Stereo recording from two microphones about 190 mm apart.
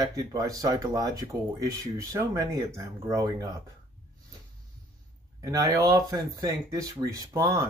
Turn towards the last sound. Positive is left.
turn(degrees=-15)  # may be behind; listen again after turning